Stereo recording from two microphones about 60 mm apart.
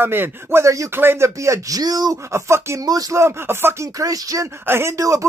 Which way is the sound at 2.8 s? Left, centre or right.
Right.